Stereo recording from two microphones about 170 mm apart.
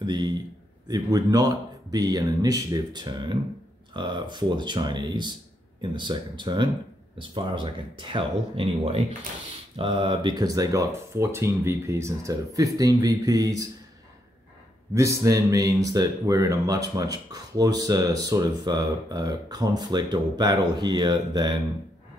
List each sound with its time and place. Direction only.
0.0 s speech: 25° right (ahead or behind)
15.0 s speech: 20° right (ahead or behind)